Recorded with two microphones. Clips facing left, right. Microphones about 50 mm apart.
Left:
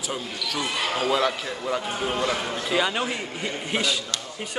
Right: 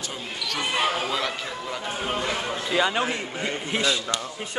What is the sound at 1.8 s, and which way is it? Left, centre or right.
A man's voice, centre.